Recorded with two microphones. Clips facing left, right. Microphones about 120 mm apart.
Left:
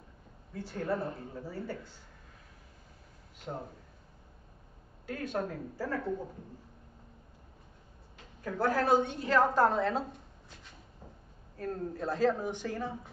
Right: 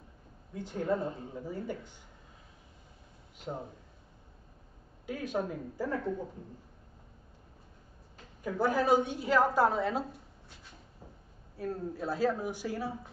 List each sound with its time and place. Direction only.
0.6 s a woman's voice: 15° right (ahead or behind)
3.5 s a woman's voice: 5° right (ahead or behind)
5.0 s a woman's voice: 5° right (ahead or behind)
8.5 s a woman's voice: 10° right (ahead or behind)
11.5 s a woman's voice: 5° right (ahead or behind)